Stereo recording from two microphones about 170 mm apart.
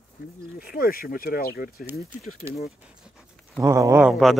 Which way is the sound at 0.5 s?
60° left (ahead or behind).